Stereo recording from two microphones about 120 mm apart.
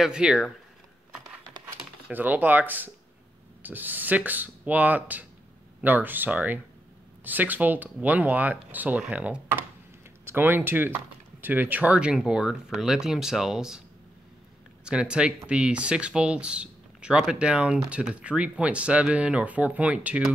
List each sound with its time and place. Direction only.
0.0 s speech: 5° right (ahead or behind)
2.0 s speech: 15° right (ahead or behind)
14.9 s speech: 10° right (ahead or behind)